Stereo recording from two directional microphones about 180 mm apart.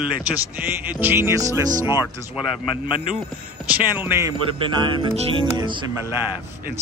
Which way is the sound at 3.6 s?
10° right (ahead or behind).